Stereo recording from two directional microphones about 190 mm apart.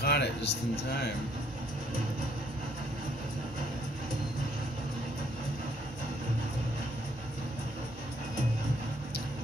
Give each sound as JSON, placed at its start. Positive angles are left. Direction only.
{"t": 0.0, "sound": "a man's voice", "side_deg": 60}